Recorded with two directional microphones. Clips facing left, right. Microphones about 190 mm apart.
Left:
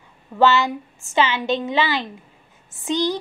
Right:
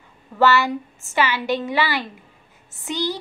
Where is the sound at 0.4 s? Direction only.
20° left (ahead or behind).